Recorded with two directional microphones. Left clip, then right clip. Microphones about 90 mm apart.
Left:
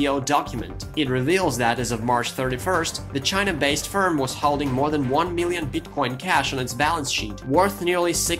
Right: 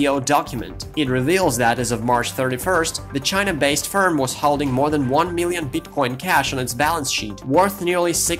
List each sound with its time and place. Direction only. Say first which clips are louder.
0.0 s speech: right 3 dB; 40° right (ahead or behind)